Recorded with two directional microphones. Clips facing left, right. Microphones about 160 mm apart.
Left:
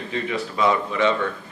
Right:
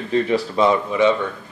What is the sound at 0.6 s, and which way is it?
Speech, 15° right (ahead or behind).